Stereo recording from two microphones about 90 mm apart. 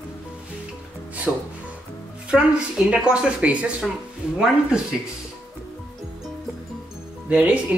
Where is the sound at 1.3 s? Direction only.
15° right (ahead or behind).